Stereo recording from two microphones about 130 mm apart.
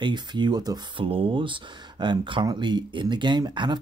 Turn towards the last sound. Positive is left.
turn(degrees=-35)  # may be behind; listen again after turning